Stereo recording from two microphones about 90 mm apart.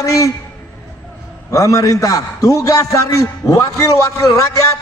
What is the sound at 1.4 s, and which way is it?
A man's voice, 40° left (ahead or behind).